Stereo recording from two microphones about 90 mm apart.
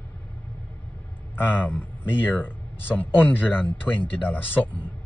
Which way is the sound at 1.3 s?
20° left (ahead or behind).